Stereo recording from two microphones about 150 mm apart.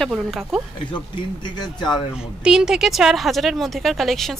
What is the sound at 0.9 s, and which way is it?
Speech, 30° left (ahead or behind).